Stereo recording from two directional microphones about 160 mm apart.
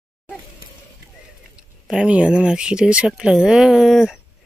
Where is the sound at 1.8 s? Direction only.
5° right (ahead or behind).